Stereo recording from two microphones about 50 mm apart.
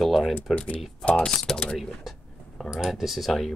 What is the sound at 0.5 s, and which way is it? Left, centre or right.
Speech, left.